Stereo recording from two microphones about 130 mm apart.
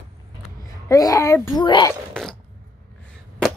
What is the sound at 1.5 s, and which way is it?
Speech, 35° left (ahead or behind).